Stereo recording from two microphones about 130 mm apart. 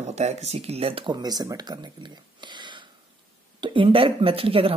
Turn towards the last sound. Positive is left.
turn(degrees=-45)  # may be behind; listen again after turning